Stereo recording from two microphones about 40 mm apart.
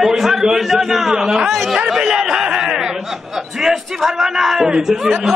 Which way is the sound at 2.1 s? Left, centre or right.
Centre.